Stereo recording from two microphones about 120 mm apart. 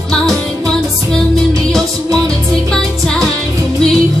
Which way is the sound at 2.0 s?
30° right (ahead or behind).